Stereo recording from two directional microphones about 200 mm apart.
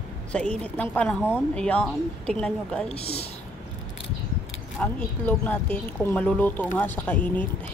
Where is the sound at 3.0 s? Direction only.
30° left (ahead or behind).